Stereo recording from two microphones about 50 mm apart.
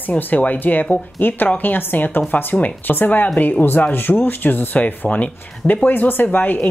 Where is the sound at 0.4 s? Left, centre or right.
Left.